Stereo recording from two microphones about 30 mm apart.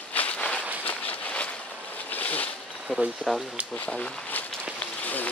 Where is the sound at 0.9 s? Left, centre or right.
Left.